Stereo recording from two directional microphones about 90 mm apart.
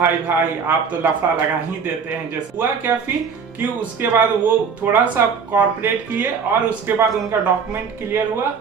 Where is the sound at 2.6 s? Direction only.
20° right (ahead or behind).